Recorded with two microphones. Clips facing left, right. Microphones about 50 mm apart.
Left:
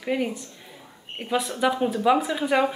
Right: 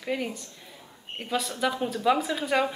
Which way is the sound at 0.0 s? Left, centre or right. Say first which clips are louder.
Left 4 dB; centre.